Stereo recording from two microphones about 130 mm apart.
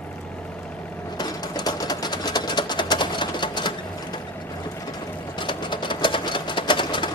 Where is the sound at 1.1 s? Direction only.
30° left (ahead or behind).